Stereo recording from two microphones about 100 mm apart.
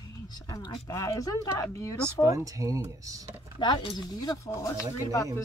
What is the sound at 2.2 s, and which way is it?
Speech, 35° right (ahead or behind).